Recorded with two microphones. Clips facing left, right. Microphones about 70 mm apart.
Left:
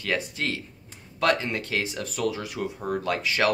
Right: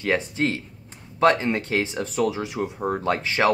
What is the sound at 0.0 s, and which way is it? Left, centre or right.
Speech, right.